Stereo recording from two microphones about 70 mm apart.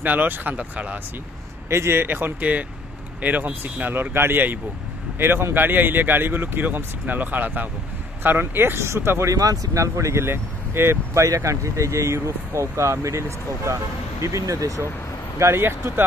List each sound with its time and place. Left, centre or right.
0.0 s speech: right
1.7 s speech: right
9.3 s speech: right
9.9 s speech: right
11.2 s speech: right
15.3 s speech: right